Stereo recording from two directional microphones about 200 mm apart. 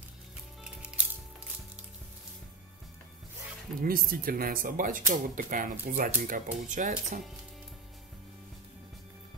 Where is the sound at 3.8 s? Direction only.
45° right (ahead or behind).